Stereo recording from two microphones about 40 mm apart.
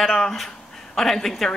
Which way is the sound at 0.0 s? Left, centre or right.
Centre.